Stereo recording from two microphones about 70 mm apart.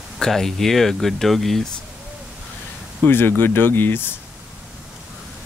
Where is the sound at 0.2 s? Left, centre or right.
Centre.